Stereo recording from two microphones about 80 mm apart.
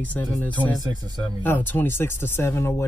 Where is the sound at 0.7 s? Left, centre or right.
Right.